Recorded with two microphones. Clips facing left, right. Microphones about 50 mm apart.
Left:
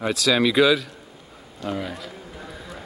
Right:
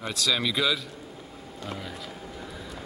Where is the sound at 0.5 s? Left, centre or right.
Left.